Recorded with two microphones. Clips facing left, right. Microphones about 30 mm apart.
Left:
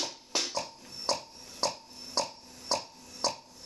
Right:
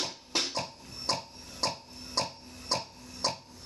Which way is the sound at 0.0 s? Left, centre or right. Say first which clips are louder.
Right 1 dB; right.